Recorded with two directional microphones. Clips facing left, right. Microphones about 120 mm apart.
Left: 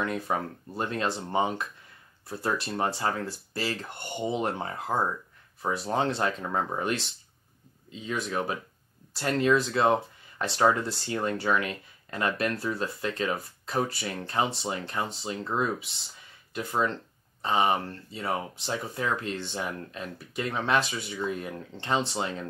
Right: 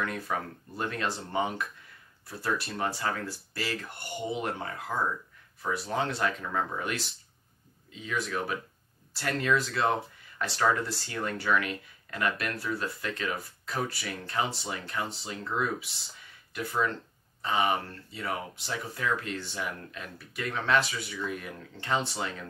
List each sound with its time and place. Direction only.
0.0 s speech: 25° left (ahead or behind)